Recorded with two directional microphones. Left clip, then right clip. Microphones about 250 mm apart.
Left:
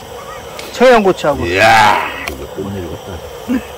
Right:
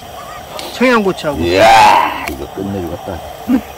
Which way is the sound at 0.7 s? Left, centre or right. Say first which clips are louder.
Left 4 dB; centre.